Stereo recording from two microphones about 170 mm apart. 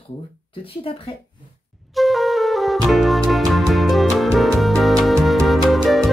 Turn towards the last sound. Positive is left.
turn(degrees=0)  # may be behind; listen again after turning